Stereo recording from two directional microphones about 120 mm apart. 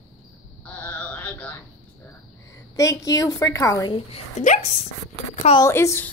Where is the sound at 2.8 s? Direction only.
25° left (ahead or behind).